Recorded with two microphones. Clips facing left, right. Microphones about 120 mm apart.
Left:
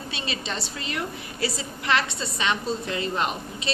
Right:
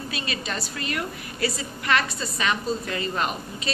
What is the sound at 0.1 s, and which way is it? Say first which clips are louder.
A woman's voice: left 1 dB; 25° left (ahead or behind).